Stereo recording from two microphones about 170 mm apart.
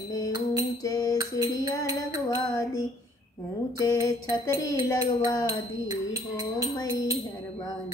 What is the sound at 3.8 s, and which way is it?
Music, 20° left (ahead or behind).